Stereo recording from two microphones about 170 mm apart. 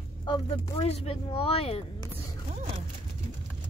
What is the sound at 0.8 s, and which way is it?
Speech, 35° left (ahead or behind).